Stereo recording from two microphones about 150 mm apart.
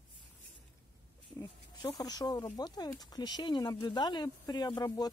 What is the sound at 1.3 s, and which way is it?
Speech, 15° left (ahead or behind).